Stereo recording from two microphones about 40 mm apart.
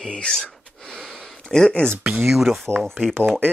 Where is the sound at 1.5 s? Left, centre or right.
Centre.